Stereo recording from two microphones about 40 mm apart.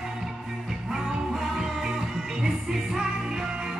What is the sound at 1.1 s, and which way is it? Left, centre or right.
Music, centre.